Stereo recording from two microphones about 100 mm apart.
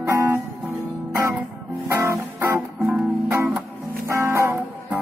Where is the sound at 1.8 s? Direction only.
25° right (ahead or behind).